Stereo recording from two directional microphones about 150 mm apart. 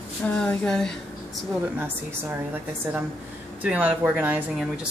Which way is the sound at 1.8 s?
15° right (ahead or behind).